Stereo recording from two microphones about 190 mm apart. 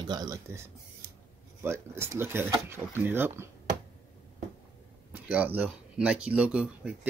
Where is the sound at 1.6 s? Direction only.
15° right (ahead or behind).